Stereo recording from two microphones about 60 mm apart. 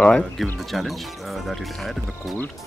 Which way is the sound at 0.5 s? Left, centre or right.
Centre.